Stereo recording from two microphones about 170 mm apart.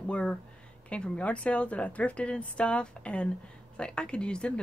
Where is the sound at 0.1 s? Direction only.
5° left (ahead or behind).